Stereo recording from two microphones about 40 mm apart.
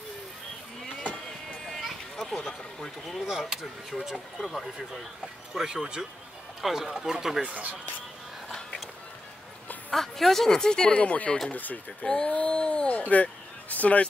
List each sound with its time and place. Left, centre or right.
1.7 s a sound: centre
3.3 s speech: centre
4.4 s speech: centre
5.5 s speech: centre
7.4 s speech: right
8.5 s music: centre
9.8 s a woman's voice: centre
10.9 s speech: left
11.5 s speech: left
12.1 s speech: left